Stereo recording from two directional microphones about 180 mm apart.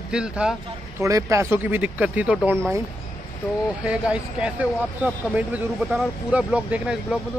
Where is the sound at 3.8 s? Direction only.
5° right (ahead or behind).